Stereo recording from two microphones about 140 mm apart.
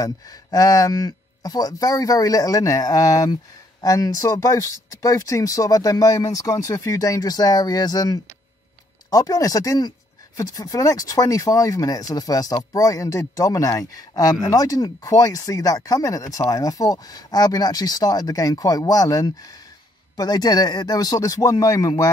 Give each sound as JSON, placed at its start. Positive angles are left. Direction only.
{"t": 0.0, "sound": "speech", "side_deg": 25}